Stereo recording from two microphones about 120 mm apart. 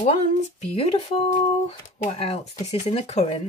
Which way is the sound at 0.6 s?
55° left (ahead or behind).